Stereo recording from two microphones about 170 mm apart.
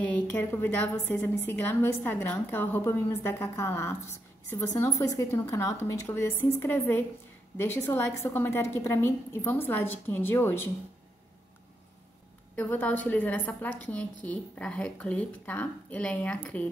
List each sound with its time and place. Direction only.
0.0 s a woman's voice: 10° left (ahead or behind)
12.5 s a woman's voice: 10° left (ahead or behind)